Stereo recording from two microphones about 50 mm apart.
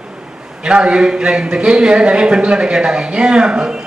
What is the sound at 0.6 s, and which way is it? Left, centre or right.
Speech, centre.